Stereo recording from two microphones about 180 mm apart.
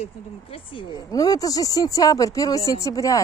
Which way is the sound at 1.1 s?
20° left (ahead or behind).